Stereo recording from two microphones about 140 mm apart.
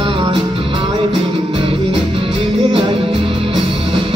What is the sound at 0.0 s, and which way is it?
Music, 40° right (ahead or behind).